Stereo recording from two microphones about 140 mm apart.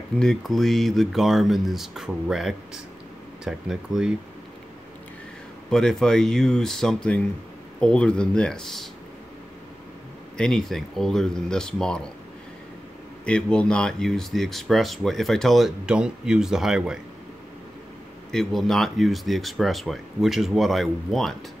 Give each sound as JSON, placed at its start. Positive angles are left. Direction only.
{"t": 0.2, "sound": "speech", "side_deg": 5}
{"t": 5.7, "sound": "speech", "side_deg": 5}
{"t": 10.3, "sound": "speech", "side_deg": 5}
{"t": 13.2, "sound": "speech", "side_deg": 5}
{"t": 18.3, "sound": "speech", "side_deg": 0}